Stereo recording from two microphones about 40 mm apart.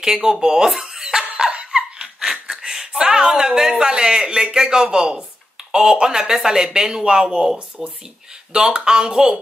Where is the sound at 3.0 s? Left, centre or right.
Centre.